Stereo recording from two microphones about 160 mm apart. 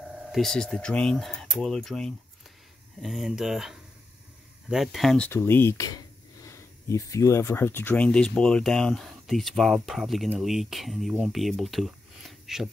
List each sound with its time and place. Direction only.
0.3 s speech: 5° left (ahead or behind)